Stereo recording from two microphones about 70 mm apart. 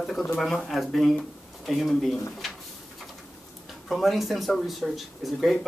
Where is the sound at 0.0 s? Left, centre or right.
Centre.